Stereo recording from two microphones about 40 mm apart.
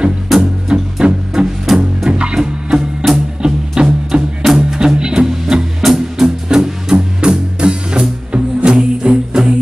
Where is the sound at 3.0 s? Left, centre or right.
Centre.